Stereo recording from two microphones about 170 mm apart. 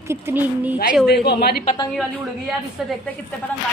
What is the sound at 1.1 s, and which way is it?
Speech, 75° left (ahead or behind).